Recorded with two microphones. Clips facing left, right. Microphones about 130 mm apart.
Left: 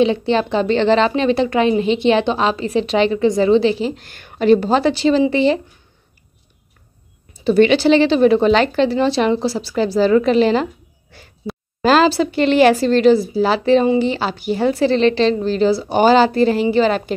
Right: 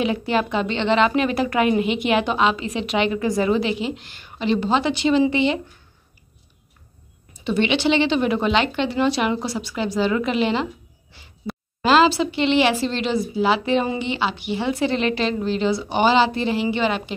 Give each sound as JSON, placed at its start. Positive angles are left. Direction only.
{"t": 0.0, "sound": "a woman's voice", "side_deg": 25}
{"t": 7.4, "sound": "a woman's voice", "side_deg": 40}
{"t": 11.8, "sound": "a woman's voice", "side_deg": 40}